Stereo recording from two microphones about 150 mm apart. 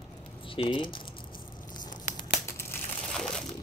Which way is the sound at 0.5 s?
35° left (ahead or behind).